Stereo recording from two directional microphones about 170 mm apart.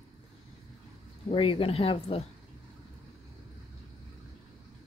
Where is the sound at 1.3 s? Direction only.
30° left (ahead or behind).